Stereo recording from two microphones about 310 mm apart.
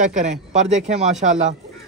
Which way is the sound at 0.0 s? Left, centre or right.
Right.